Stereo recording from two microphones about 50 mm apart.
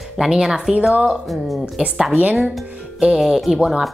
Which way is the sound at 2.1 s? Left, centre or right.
Right.